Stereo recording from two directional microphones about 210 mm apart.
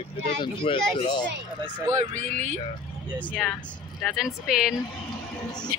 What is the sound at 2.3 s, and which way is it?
Speech, 35° right (ahead or behind).